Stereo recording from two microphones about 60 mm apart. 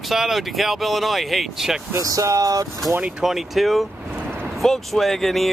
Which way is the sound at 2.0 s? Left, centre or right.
Right.